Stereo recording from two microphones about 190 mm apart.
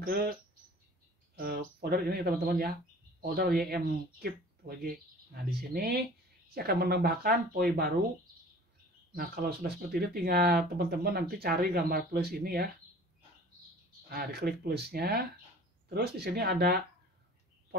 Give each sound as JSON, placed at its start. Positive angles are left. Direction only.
{"t": 0.0, "sound": "speech", "side_deg": -50}
{"t": 9.1, "sound": "speech", "side_deg": -50}
{"t": 14.0, "sound": "speech", "side_deg": -55}